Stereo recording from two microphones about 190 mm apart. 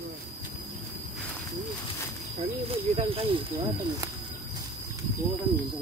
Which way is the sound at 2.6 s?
30° right (ahead or behind).